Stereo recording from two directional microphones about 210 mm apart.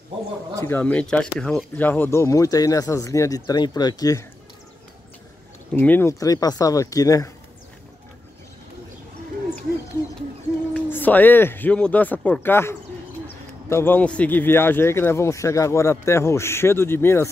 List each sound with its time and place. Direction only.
0.7 s speech: 10° left (ahead or behind)
5.8 s speech: 10° left (ahead or behind)
10.7 s speech: 10° left (ahead or behind)